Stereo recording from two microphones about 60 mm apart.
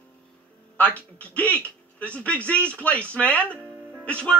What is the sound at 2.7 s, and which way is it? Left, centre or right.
Speech, left.